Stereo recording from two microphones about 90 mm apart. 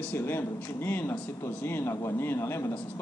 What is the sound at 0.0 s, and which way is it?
A man's voice, 25° left (ahead or behind).